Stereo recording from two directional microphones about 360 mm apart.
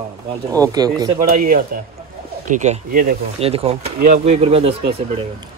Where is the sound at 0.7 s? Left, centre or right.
Centre.